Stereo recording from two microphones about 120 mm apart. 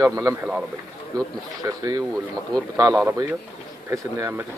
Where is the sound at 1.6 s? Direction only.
30° right (ahead or behind).